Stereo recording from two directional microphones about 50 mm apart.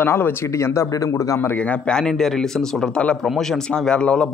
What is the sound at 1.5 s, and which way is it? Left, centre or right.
Speech, left.